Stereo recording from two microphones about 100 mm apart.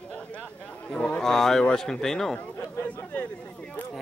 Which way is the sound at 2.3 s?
15° left (ahead or behind).